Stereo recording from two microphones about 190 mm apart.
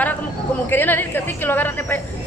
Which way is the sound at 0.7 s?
10° left (ahead or behind).